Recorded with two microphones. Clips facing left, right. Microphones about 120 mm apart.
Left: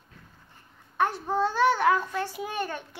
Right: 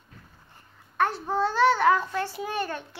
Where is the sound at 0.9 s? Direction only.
15° left (ahead or behind).